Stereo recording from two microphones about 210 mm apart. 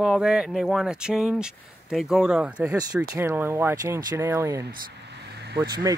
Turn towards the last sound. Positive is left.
turn(degrees=-20)  # may be behind; listen again after turning